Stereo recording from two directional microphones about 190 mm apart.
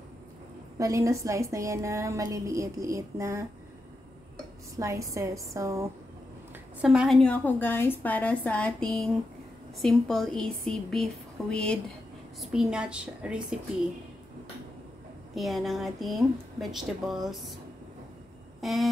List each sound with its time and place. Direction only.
0.7 s a woman's voice: 15° right (ahead or behind)
4.7 s a woman's voice: 15° right (ahead or behind)
6.8 s a woman's voice: 5° right (ahead or behind)
15.3 s a woman's voice: centre (ahead or behind)
18.6 s a sound: centre (ahead or behind)